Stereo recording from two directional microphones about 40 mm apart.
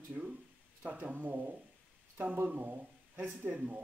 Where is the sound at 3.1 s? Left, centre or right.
Right.